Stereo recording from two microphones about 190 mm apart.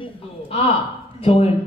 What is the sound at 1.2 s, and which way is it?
Speech, 30° left (ahead or behind).